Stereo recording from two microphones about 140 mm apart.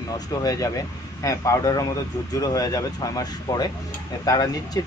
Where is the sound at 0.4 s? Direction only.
25° left (ahead or behind).